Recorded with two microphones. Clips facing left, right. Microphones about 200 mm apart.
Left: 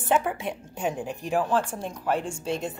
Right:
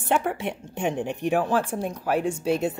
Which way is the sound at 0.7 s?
70° right (ahead or behind).